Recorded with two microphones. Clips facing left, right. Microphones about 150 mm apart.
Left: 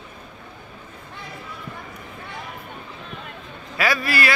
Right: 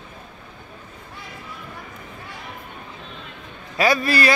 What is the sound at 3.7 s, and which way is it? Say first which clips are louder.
Speech: right 4 dB; 25° right (ahead or behind).